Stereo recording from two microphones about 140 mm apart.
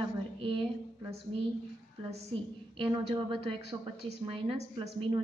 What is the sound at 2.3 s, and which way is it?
A woman's voice, 40° right (ahead or behind).